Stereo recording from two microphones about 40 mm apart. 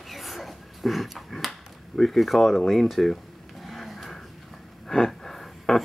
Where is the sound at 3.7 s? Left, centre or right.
Centre.